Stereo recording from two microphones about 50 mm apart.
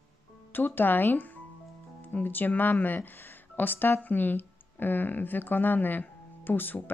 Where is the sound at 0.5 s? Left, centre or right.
Left.